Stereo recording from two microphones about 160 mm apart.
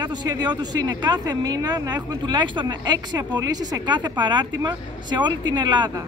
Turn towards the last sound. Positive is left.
turn(degrees=-25)  # may be behind; listen again after turning